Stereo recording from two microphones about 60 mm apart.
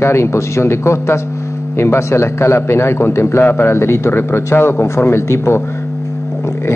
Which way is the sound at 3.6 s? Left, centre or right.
Left.